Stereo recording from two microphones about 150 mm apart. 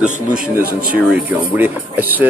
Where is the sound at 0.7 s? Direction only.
70° right (ahead or behind).